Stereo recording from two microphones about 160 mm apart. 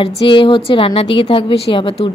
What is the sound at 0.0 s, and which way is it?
A woman's voice, 30° left (ahead or behind).